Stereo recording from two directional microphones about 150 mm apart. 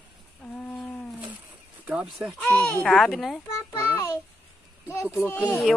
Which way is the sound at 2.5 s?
10° left (ahead or behind).